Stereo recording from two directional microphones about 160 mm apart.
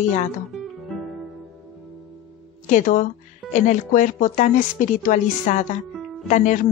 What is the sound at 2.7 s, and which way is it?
Speech, 55° left (ahead or behind).